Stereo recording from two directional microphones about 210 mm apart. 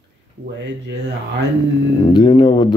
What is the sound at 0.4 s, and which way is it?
Speech, 50° right (ahead or behind).